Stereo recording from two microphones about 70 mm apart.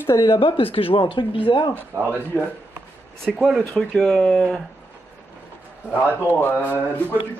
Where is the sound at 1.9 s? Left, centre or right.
Right.